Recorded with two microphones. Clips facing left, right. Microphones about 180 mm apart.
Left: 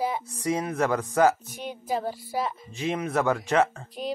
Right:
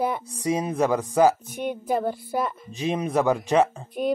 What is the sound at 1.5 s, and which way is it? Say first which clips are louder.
Speech: right 5 dB; 55° right (ahead or behind).